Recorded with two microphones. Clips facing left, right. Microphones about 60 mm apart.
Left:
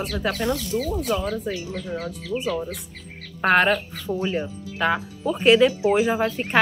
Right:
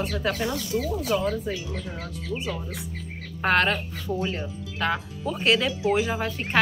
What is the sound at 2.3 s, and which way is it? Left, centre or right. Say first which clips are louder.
Speech: left 4 dB; left.